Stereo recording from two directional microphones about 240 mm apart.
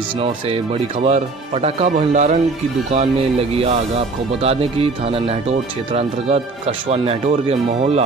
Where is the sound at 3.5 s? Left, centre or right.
Right.